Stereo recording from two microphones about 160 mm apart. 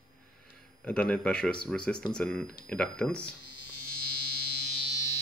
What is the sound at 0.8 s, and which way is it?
Speech, 5° left (ahead or behind).